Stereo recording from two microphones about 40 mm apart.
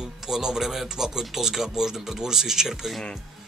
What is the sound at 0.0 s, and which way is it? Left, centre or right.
Speech, centre.